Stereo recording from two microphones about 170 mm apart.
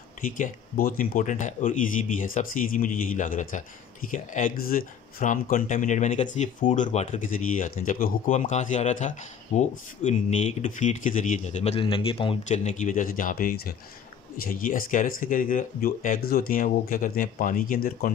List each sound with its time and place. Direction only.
0.2 s speech: 55° left (ahead or behind)